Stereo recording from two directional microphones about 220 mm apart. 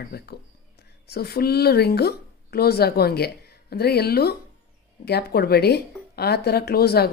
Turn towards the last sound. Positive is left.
turn(degrees=45)  # may be behind; listen again after turning